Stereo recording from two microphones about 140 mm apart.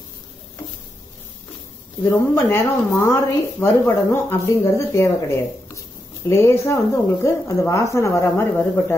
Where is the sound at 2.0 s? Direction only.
20° left (ahead or behind).